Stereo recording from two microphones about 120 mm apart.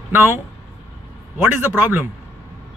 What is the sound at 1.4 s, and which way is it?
Speech, 15° right (ahead or behind).